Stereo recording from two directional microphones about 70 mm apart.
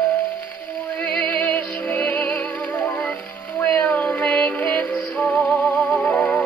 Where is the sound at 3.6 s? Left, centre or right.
Left.